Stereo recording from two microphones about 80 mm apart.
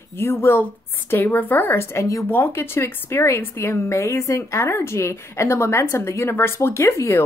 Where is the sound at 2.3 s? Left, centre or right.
Left.